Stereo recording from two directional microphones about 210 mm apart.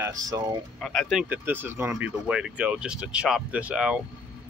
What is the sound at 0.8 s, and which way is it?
Speech, 5° left (ahead or behind).